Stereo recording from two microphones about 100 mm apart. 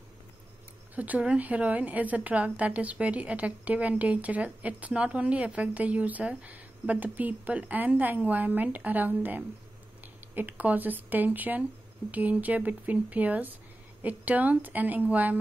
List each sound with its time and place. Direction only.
0.9 s a woman's voice: 15° right (ahead or behind)